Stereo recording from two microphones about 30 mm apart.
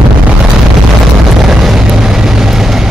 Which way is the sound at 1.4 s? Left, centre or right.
Centre.